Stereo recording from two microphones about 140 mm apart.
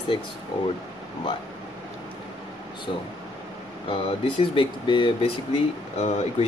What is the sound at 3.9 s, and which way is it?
Speech, 40° left (ahead or behind).